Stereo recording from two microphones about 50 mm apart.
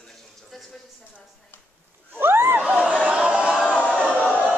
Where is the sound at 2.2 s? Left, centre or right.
Right.